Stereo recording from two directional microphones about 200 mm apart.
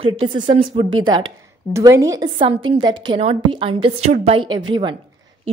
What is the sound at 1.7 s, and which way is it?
A woman's voice, 15° right (ahead or behind).